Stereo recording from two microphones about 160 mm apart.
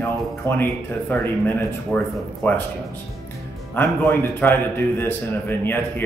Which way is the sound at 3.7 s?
10° left (ahead or behind).